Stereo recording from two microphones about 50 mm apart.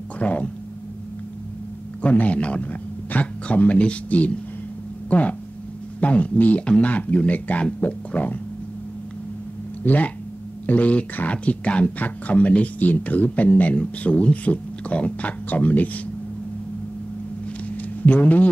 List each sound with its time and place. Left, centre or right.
0.2 s speech: left
2.0 s speech: left
9.8 s speech: left
13.7 s speech: left
18.0 s speech: left